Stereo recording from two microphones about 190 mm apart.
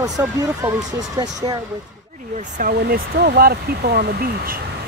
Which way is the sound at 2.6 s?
50° right (ahead or behind).